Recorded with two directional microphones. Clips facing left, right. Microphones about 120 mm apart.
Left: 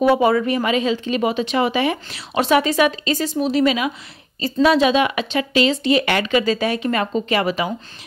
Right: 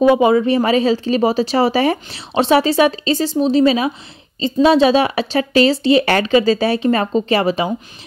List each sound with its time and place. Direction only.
0.0 s speech: 20° right (ahead or behind)